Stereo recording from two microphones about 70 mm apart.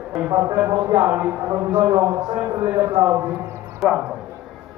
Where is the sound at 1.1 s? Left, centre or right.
Right.